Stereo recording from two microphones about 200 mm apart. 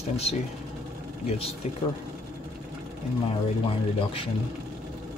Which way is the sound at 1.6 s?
35° left (ahead or behind).